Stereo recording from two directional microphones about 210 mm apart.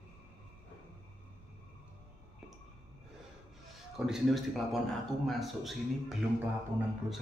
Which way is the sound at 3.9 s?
Centre (ahead or behind).